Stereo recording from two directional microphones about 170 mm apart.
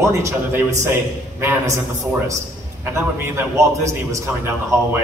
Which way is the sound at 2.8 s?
15° right (ahead or behind).